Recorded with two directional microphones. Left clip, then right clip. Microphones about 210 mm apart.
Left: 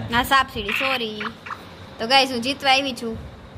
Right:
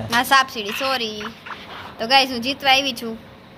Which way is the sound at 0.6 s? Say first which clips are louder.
Left 1 dB; 25° right (ahead or behind).